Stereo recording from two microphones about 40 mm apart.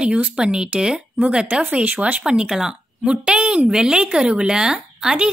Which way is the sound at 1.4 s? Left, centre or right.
Right.